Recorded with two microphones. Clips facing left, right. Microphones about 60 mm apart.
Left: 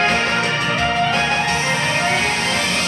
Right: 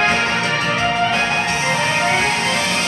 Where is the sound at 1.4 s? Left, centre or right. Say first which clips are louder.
Right 1 dB; right.